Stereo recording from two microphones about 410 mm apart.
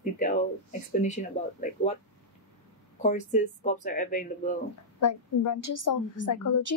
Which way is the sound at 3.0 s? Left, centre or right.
Centre.